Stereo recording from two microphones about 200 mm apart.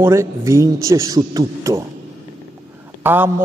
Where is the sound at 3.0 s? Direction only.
10° right (ahead or behind).